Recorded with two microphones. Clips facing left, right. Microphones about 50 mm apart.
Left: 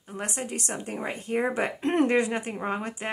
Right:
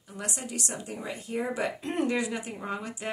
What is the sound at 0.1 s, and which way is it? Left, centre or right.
A woman's voice, left.